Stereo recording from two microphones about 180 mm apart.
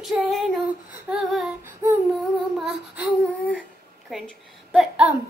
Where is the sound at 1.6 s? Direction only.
10° right (ahead or behind).